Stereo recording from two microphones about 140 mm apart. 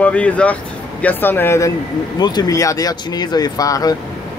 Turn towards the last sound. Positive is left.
turn(degrees=25)  # may be behind; listen again after turning